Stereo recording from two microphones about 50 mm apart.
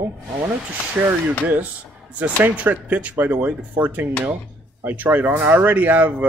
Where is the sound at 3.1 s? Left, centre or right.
Right.